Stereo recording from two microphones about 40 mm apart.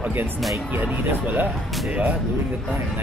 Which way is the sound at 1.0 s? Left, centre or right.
Right.